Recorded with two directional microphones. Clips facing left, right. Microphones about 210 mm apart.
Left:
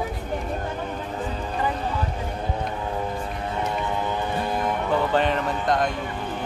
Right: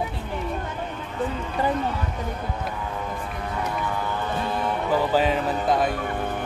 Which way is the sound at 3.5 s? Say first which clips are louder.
Left 1 dB; 25° left (ahead or behind).